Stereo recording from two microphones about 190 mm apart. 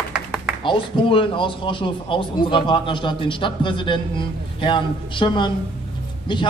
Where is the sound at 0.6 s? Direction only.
25° left (ahead or behind).